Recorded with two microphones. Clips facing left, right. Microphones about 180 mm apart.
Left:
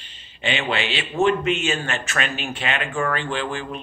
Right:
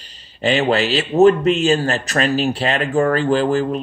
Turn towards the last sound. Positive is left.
turn(degrees=-40)  # may be behind; listen again after turning